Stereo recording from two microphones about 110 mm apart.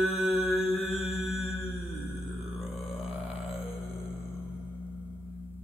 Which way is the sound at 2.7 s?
65° left (ahead or behind).